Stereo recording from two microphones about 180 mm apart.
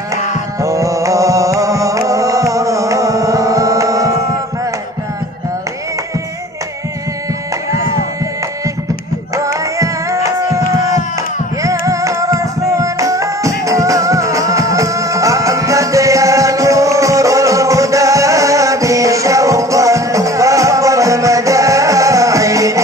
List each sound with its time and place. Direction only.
0.6 s chant: 15° right (ahead or behind)
9.3 s music: 15° right (ahead or behind)
11.8 s music: 15° right (ahead or behind)